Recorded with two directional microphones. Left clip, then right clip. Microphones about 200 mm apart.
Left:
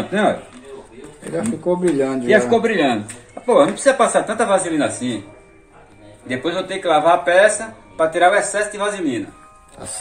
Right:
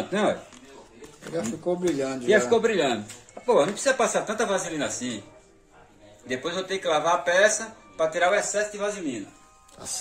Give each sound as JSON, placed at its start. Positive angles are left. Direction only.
{"t": 0.1, "sound": "speech", "side_deg": -35}
{"t": 1.3, "sound": "a man's voice", "side_deg": -10}
{"t": 2.2, "sound": "a man's voice", "side_deg": -30}
{"t": 4.4, "sound": "a man's voice", "side_deg": -15}
{"t": 6.2, "sound": "a man's voice", "side_deg": -15}